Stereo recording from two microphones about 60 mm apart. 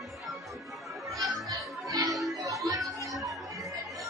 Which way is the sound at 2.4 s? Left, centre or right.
Right.